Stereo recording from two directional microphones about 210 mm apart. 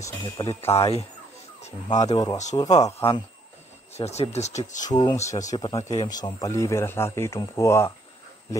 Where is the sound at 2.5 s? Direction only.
15° left (ahead or behind).